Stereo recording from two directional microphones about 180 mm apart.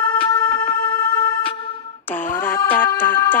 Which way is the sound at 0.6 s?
55° left (ahead or behind).